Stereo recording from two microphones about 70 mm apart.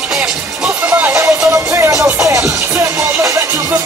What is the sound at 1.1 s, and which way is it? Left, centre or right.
Music, right.